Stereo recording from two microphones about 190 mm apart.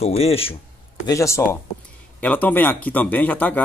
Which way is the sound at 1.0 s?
15° left (ahead or behind).